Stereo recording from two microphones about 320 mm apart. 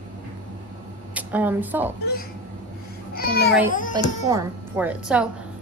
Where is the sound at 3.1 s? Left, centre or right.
Left.